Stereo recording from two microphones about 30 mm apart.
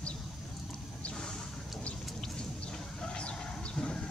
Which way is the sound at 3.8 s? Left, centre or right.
Left.